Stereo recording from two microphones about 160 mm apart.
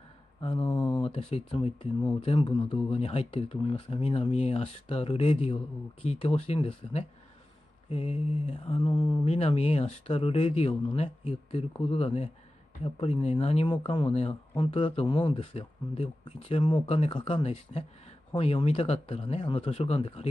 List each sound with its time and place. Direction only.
0.4 s mantra: 35° left (ahead or behind)
0.7 s a sound: 25° left (ahead or behind)
1.0 s speech: 35° left (ahead or behind)